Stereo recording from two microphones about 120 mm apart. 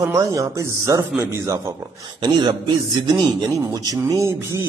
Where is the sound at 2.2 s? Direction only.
40° right (ahead or behind).